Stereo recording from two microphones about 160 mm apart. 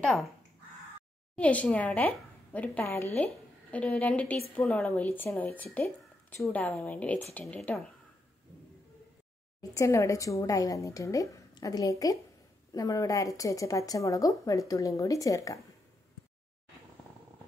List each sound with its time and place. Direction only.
0.0 s speech: centre (ahead or behind)
1.3 s a woman's voice: 10° left (ahead or behind)
9.6 s speech: 20° left (ahead or behind)